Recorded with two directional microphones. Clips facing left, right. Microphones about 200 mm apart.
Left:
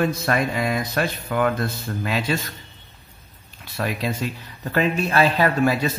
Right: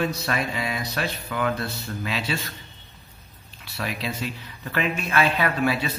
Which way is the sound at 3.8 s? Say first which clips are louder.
Left 5 dB; 50° left (ahead or behind).